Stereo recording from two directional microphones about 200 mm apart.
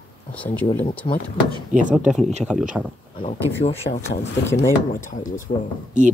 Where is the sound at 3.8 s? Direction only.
50° left (ahead or behind).